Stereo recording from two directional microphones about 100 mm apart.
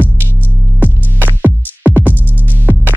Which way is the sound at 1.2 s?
15° right (ahead or behind).